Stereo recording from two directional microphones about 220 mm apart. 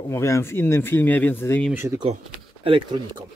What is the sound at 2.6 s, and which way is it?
Speech, 25° right (ahead or behind).